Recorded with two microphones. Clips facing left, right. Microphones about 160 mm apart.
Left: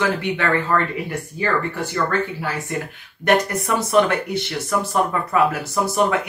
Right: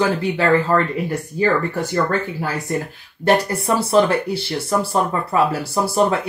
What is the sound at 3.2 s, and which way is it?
Speech, 30° right (ahead or behind).